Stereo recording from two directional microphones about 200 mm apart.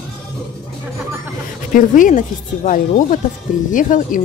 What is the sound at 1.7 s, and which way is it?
Speech, 40° left (ahead or behind).